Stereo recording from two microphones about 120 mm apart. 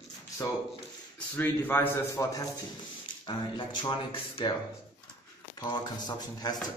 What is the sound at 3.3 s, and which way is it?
Speech, 40° left (ahead or behind).